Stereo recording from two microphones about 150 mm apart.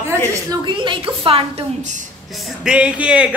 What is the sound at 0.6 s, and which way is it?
A woman's voice, 35° right (ahead or behind).